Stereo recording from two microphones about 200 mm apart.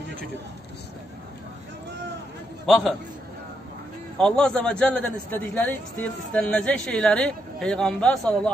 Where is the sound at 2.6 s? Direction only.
Centre (ahead or behind).